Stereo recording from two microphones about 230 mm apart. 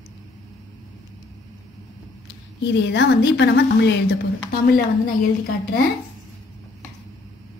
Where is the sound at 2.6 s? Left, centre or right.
Left.